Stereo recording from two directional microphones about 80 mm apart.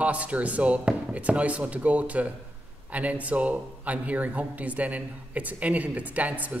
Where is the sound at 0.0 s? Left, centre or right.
Centre.